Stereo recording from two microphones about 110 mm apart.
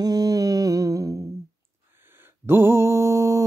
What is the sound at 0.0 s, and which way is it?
Humming, 35° right (ahead or behind).